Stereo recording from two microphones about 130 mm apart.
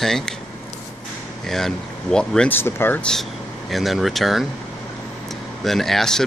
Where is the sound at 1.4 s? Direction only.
5° left (ahead or behind).